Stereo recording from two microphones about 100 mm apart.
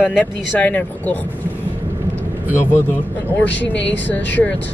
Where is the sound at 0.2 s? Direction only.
15° left (ahead or behind).